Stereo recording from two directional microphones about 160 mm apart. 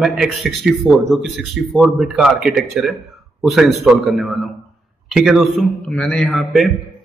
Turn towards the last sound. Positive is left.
turn(degrees=0)  # may be behind; listen again after turning